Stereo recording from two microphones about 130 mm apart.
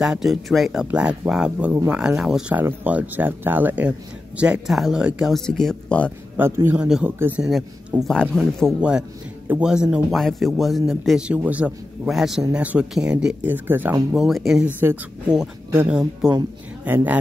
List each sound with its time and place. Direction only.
0.0 s a man's voice: 5° right (ahead or behind)
6.3 s a man's voice: 15° right (ahead or behind)
8.1 s a man's voice: 5° left (ahead or behind); by 13.9 s 15° right (ahead or behind)
14.1 s speech: centre (ahead or behind)
14.8 s a man's voice: 15° right (ahead or behind)
16.2 s a man's voice: 5° right (ahead or behind)